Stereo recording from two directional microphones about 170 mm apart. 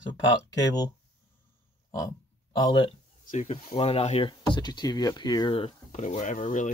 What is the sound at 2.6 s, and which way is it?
Speech, 30° left (ahead or behind).